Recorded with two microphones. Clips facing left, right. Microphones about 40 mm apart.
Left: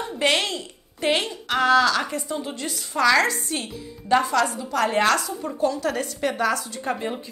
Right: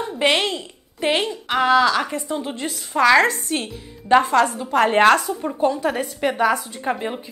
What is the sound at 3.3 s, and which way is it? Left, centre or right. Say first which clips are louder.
A woman's voice: right 4 dB; right.